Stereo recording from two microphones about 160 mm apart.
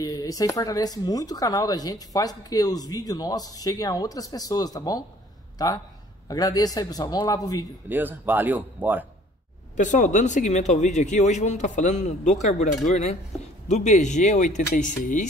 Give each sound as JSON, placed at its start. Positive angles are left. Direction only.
{"t": 0.0, "sound": "speech", "side_deg": 25}
{"t": 7.9, "sound": "speech", "side_deg": -10}
{"t": 9.8, "sound": "speech", "side_deg": 50}